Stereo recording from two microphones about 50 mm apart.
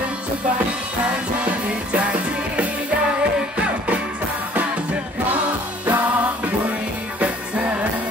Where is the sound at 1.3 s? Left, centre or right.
Right.